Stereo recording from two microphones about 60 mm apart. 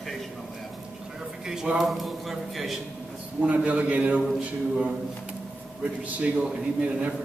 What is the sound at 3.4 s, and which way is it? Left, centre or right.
Speech, right.